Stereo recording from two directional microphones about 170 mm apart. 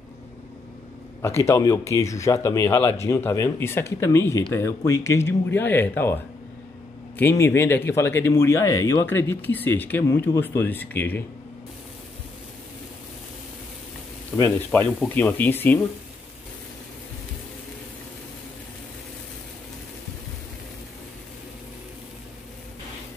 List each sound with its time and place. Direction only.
1.2 s speech: 15° left (ahead or behind)
7.2 s speech: 15° left (ahead or behind)
14.3 s speech: 15° left (ahead or behind)